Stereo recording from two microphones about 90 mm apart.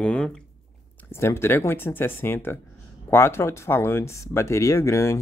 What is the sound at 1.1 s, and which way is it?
Speech, 30° left (ahead or behind).